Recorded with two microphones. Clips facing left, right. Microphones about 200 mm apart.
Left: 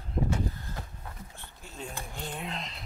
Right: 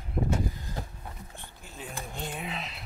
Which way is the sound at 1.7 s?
5° right (ahead or behind).